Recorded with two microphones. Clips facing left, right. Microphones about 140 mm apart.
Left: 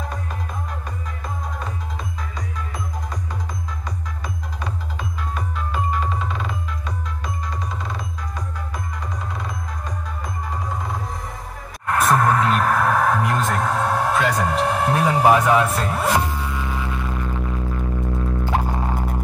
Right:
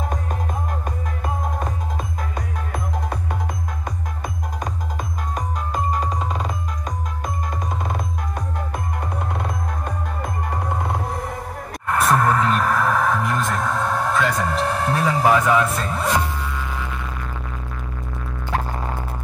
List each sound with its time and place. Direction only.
2.3 s music: 60° right (ahead or behind)
5.3 s music: 40° right (ahead or behind)
7.8 s music: 55° right (ahead or behind)
11.9 s music: centre (ahead or behind)